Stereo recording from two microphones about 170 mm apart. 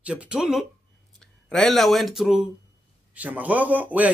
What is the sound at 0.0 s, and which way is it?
Speech, 5° right (ahead or behind).